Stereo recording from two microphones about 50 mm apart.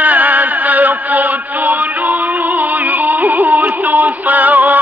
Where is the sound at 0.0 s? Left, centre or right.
Right.